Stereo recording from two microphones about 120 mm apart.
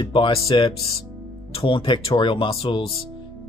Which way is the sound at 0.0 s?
45° left (ahead or behind).